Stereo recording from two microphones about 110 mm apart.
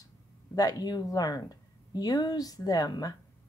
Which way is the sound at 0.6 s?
35° left (ahead or behind).